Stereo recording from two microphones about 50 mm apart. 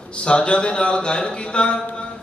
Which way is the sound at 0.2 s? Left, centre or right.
Left.